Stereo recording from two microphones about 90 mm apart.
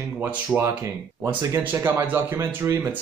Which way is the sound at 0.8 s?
35° right (ahead or behind).